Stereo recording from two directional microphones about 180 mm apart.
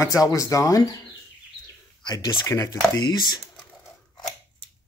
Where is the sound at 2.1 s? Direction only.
20° left (ahead or behind).